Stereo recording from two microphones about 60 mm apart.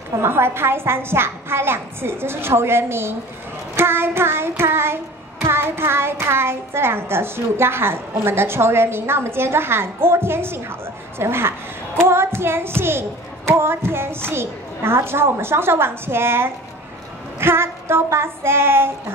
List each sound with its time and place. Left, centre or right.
0.2 s child singing: right